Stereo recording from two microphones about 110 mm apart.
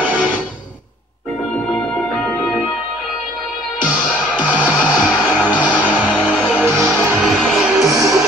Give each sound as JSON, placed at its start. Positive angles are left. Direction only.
{"t": 4.4, "sound": "music", "side_deg": -15}
{"t": 6.6, "sound": "music", "side_deg": -25}
{"t": 7.2, "sound": "music", "side_deg": 0}
{"t": 7.9, "sound": "music", "side_deg": -30}